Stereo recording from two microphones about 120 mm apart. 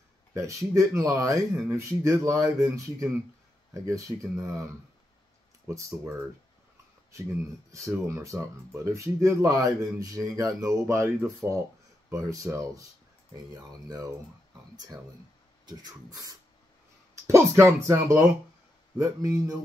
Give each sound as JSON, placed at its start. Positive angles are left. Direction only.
{"t": 0.3, "sound": "speech", "side_deg": -25}
{"t": 5.7, "sound": "speech", "side_deg": -25}
{"t": 7.7, "sound": "speech", "side_deg": -20}
{"t": 13.7, "sound": "speech", "side_deg": -30}
{"t": 15.6, "sound": "speech", "side_deg": -35}